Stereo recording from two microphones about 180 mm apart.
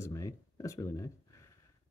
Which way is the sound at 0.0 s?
20° left (ahead or behind).